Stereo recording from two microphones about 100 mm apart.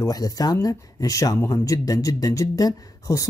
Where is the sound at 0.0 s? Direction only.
40° left (ahead or behind).